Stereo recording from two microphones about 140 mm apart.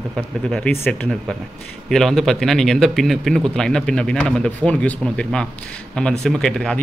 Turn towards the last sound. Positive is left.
turn(degrees=5)  # may be behind; listen again after turning